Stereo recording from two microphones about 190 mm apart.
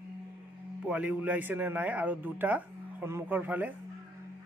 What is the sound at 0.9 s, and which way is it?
A man's voice, 5° right (ahead or behind).